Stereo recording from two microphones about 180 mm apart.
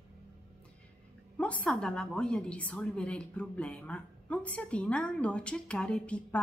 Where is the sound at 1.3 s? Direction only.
5° left (ahead or behind).